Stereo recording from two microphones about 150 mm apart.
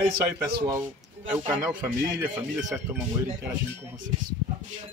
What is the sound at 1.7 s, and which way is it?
Speech, 10° right (ahead or behind).